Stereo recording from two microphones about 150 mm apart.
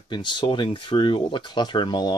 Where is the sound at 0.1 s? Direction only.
30° left (ahead or behind).